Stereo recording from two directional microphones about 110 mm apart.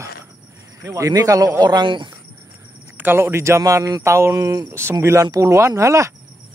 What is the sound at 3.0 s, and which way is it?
Speech, 20° right (ahead or behind).